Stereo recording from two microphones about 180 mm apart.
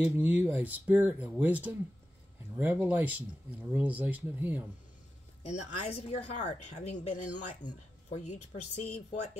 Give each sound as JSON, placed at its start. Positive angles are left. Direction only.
{"t": 0.0, "sound": "speech", "side_deg": -10}
{"t": 5.4, "sound": "a woman's voice", "side_deg": 35}